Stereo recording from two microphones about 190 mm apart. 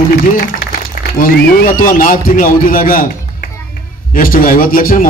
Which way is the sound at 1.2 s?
45° left (ahead or behind).